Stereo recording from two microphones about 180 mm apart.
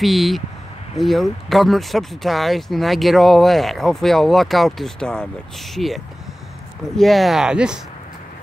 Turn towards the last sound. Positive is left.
turn(degrees=-5)  # may be behind; listen again after turning